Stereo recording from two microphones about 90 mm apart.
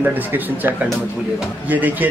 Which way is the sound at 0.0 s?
20° right (ahead or behind).